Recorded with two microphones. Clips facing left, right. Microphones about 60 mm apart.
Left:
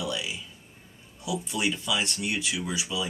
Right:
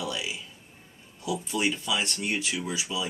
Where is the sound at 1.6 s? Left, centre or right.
Centre.